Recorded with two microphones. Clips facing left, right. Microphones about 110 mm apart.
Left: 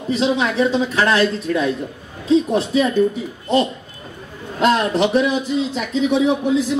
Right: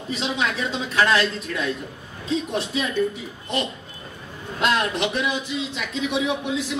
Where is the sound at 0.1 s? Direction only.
35° left (ahead or behind).